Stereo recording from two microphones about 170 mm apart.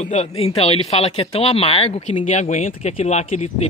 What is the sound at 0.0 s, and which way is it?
Speech, 40° left (ahead or behind).